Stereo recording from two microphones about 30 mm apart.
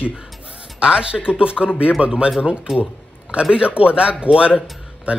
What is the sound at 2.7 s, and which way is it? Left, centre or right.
Speech, centre.